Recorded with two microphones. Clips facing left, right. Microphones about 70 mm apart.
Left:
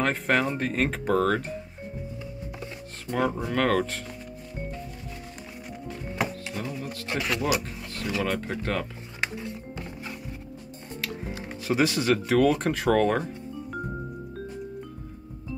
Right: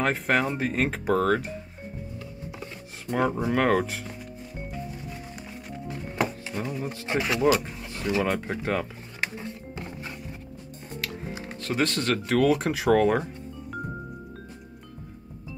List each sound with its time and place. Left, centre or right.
0.0 s speech: centre
2.6 s speech: centre
5.9 s music: centre
6.7 s speech: centre
11.0 s music: centre
11.6 s speech: centre